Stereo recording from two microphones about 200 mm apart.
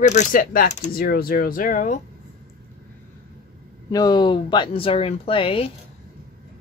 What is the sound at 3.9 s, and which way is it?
Speech, 20° left (ahead or behind).